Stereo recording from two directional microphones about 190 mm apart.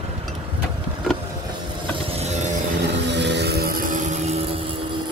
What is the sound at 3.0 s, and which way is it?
Vehicle, 65° right (ahead or behind).